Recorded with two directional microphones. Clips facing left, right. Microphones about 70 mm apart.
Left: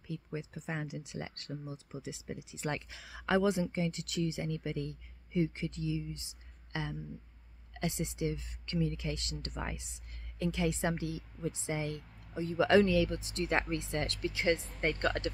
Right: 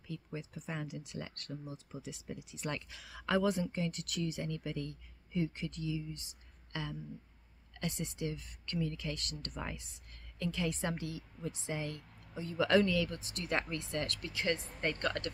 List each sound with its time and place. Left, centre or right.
0.1 s speech: centre